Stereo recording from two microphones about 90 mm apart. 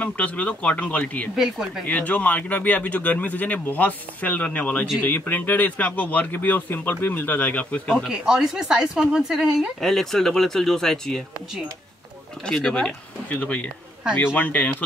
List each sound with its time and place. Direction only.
0.0 s speech: 15° left (ahead or behind)
1.3 s speech: 5° right (ahead or behind)
1.9 s speech: 15° left (ahead or behind)
7.9 s speech: 5° right (ahead or behind)
9.8 s speech: 5° left (ahead or behind)
12.5 s speech: 10° left (ahead or behind)